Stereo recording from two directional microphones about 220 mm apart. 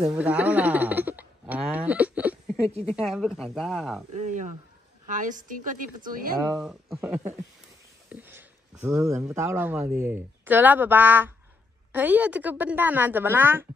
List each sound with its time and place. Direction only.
0.0 s a sound: 5° right (ahead or behind)
3.0 s speech: centre (ahead or behind)
4.1 s a woman's voice: 35° right (ahead or behind)
6.4 s a woman's voice: centre (ahead or behind)